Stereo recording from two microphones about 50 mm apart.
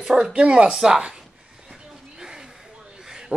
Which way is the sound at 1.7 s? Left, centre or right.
Centre.